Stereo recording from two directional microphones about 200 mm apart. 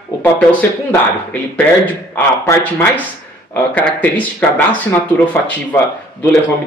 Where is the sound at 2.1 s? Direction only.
10° left (ahead or behind).